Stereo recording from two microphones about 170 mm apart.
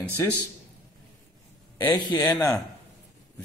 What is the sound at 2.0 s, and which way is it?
Speech, 15° left (ahead or behind).